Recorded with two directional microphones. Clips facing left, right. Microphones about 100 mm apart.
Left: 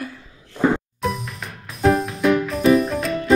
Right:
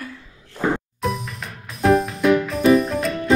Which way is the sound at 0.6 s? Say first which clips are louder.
Left 3 dB; centre (ahead or behind).